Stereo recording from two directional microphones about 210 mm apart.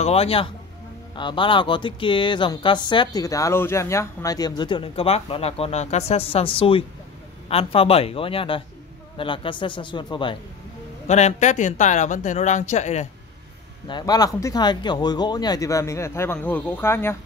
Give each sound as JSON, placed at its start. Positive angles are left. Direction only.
{"t": 0.0, "sound": "speech", "side_deg": 30}
{"t": 11.1, "sound": "speech", "side_deg": 35}
{"t": 13.8, "sound": "speech", "side_deg": 20}